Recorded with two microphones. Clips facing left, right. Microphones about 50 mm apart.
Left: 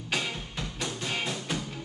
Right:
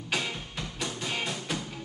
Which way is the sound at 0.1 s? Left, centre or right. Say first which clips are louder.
Even; centre.